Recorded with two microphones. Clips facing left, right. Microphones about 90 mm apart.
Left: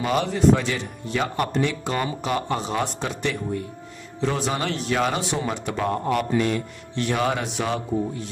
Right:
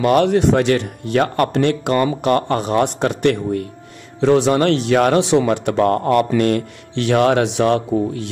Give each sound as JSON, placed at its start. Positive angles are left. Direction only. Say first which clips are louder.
{"t": 0.0, "sound": "speech", "louder": "right 6 dB", "side_deg": -65}